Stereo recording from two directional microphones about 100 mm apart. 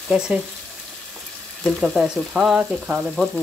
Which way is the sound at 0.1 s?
10° right (ahead or behind).